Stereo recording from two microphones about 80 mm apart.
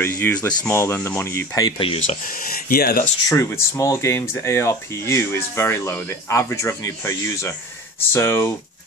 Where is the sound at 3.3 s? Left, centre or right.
Left.